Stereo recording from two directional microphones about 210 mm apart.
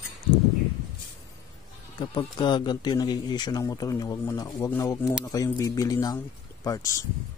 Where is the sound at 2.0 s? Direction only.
20° left (ahead or behind).